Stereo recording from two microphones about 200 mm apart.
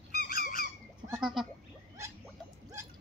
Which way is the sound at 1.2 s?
Centre (ahead or behind).